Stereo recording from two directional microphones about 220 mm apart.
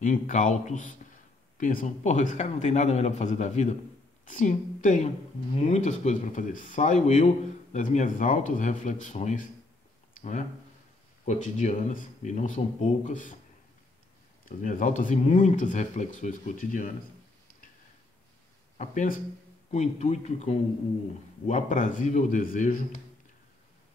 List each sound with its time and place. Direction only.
0.0 s speech: 35° left (ahead or behind)
11.2 s speech: 35° left (ahead or behind)
14.4 s speech: 35° left (ahead or behind)
18.8 s speech: 35° left (ahead or behind)